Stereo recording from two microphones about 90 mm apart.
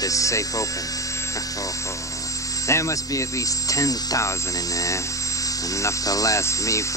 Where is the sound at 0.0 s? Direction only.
35° left (ahead or behind).